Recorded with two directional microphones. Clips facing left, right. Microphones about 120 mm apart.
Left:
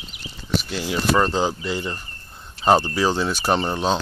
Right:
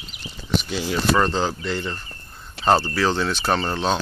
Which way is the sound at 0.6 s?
5° left (ahead or behind).